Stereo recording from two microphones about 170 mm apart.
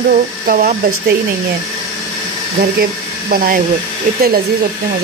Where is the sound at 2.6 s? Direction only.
60° right (ahead or behind).